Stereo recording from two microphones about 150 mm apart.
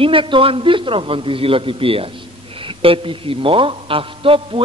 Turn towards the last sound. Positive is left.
turn(degrees=-35)  # may be behind; listen again after turning